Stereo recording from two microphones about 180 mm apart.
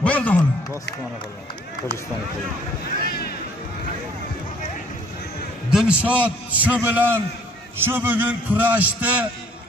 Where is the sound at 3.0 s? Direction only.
60° left (ahead or behind).